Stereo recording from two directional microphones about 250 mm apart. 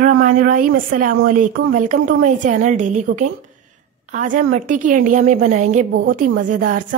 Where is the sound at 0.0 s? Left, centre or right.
Right.